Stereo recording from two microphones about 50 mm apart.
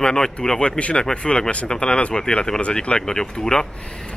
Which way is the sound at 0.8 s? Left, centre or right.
Left.